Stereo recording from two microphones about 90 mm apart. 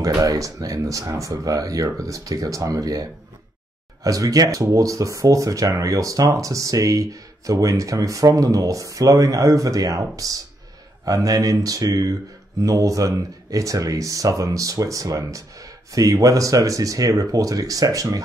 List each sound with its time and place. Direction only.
0.0 s speech: 40° right (ahead or behind)